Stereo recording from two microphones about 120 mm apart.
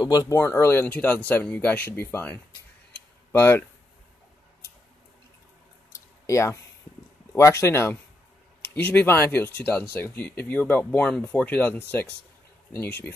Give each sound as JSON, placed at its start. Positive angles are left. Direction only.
{"t": 0.0, "sound": "speech", "side_deg": 30}
{"t": 5.9, "sound": "a sound", "side_deg": 25}
{"t": 7.3, "sound": "speech", "side_deg": 25}